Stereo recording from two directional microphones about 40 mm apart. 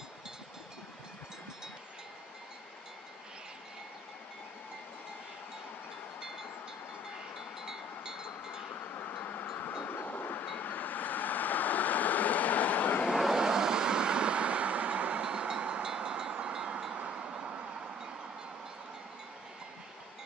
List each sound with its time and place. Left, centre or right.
7.3 s wind chime: centre
8.7 s wind chime: left
10.0 s chime: left
10.6 s vehicle: left
13.3 s vehicle: centre